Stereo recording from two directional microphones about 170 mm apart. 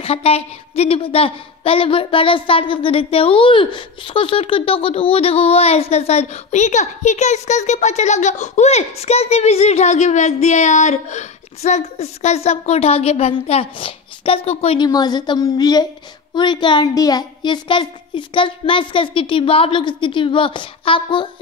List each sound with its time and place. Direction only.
0.0 s a woman's voice: 35° left (ahead or behind)
14.9 s a woman's voice: 25° left (ahead or behind)